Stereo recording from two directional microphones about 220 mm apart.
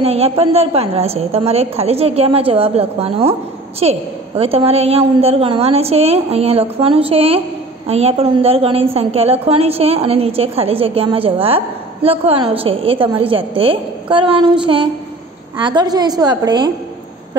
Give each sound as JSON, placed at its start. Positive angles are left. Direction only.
{"t": 0.0, "sound": "a woman's voice", "side_deg": -25}